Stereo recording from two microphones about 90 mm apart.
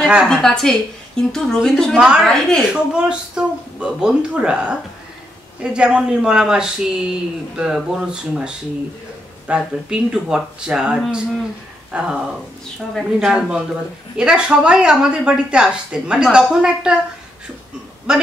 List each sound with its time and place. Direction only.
0.0 s speech: 5° right (ahead or behind)
0.3 s a woman's voice: 5° left (ahead or behind)
2.0 s speech: 10° right (ahead or behind)
2.2 s a woman's voice: 5° left (ahead or behind)
2.7 s a woman's voice: 10° right (ahead or behind)
18.1 s speech: 10° right (ahead or behind)